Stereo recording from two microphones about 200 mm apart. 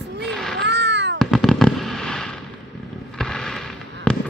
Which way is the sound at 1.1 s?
Centre (ahead or behind).